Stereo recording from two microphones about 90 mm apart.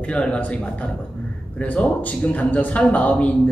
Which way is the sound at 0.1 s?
10° left (ahead or behind).